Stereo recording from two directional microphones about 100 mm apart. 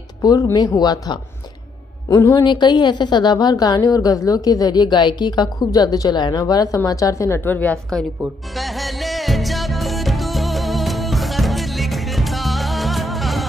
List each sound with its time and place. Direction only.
0.2 s a woman's voice: 35° left (ahead or behind)
2.0 s a woman's voice: 35° left (ahead or behind)
2.4 s a woman's voice: 50° left (ahead or behind); by 7.3 s 30° left (ahead or behind)
7.3 s a woman's voice: 15° left (ahead or behind)
8.5 s music: centre (ahead or behind)